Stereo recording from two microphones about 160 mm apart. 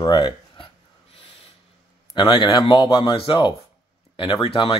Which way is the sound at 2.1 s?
30° left (ahead or behind).